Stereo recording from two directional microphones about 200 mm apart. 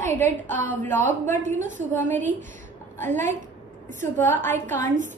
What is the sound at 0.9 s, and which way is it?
A woman's voice, 40° right (ahead or behind).